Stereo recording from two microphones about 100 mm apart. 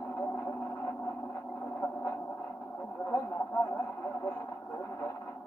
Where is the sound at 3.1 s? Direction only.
25° left (ahead or behind).